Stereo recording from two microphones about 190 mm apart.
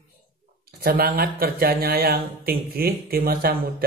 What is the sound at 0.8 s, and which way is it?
Speech, 50° right (ahead or behind).